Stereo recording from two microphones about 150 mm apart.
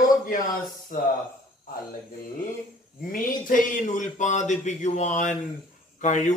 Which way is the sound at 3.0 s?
65° left (ahead or behind).